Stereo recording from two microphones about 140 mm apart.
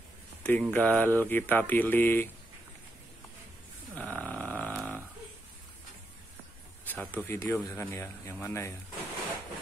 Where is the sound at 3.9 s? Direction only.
10° left (ahead or behind).